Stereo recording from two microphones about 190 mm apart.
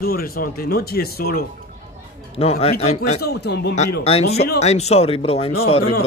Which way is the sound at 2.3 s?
30° left (ahead or behind).